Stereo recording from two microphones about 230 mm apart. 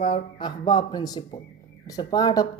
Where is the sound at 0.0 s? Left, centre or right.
Left.